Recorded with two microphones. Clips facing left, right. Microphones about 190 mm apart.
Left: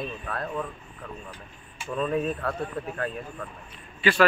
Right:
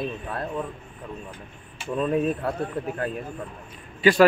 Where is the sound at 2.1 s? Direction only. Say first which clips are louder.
Right 5 dB; 20° right (ahead or behind).